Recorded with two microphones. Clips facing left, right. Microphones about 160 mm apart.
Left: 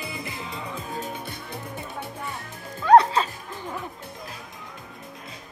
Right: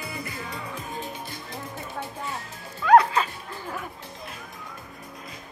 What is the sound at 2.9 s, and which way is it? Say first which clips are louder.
Music: left 1 dB; 30° left (ahead or behind).